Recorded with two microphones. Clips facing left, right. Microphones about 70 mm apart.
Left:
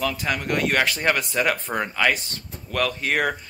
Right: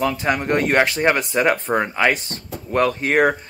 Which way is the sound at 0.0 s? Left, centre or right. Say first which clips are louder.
Right 5 dB; right.